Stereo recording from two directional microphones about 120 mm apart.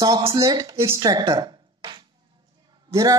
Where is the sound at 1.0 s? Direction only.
35° right (ahead or behind).